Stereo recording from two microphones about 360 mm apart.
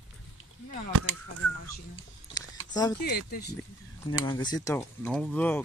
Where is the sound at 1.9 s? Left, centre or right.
Centre.